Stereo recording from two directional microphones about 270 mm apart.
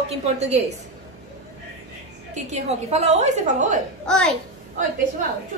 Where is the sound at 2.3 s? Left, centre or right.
Right.